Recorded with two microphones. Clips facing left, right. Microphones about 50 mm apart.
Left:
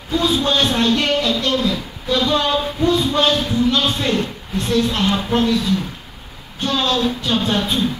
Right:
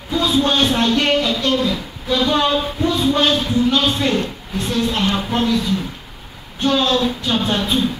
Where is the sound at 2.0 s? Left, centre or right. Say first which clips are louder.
Right 1 dB; right.